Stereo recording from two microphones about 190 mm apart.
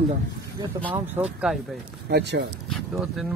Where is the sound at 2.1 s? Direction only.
65° right (ahead or behind).